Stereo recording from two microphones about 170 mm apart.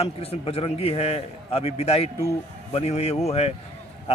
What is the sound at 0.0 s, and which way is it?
Speech, 35° left (ahead or behind).